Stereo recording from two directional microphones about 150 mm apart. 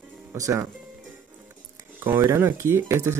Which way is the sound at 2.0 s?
15° right (ahead or behind).